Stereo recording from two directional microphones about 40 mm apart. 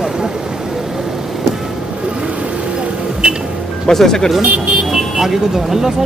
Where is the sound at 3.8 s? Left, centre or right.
Centre.